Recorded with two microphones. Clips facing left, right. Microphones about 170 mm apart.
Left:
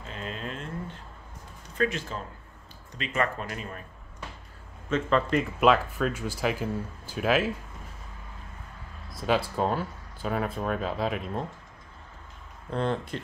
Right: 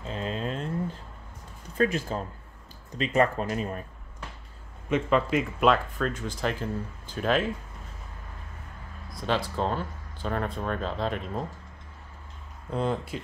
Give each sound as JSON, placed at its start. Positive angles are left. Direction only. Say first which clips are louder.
{"t": 0.0, "sound": "a sound", "louder": "right 5 dB", "side_deg": -35}
{"t": 1.8, "sound": "speech", "louder": "right 3 dB", "side_deg": -35}
{"t": 4.8, "sound": "speech", "louder": "right 1 dB", "side_deg": -15}
{"t": 5.2, "sound": "speech", "louder": "left 1 dB", "side_deg": 0}
{"t": 9.1, "sound": "speech", "louder": "left 2 dB", "side_deg": 5}
{"t": 12.7, "sound": "speech", "louder": "even", "side_deg": -5}